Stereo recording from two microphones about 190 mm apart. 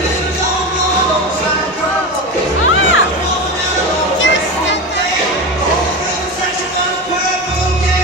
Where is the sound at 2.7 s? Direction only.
90° left.